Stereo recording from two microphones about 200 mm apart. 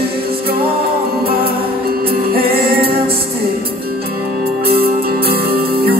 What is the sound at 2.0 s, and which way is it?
Music, 50° right (ahead or behind).